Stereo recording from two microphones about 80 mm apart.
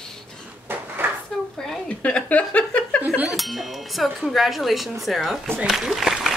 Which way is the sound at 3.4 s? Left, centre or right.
Centre.